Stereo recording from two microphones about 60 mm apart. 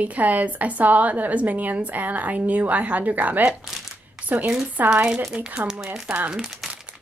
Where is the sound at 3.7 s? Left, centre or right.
Centre.